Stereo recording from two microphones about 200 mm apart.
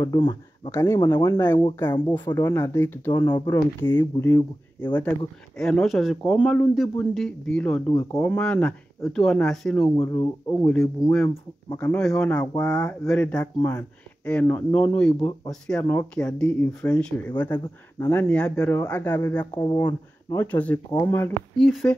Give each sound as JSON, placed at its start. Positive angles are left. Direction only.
{"t": 0.0, "sound": "a man's voice", "side_deg": 20}
{"t": 7.9, "sound": "a man's voice", "side_deg": 15}
{"t": 20.5, "sound": "speech", "side_deg": 10}
{"t": 21.5, "sound": "a man's voice", "side_deg": 5}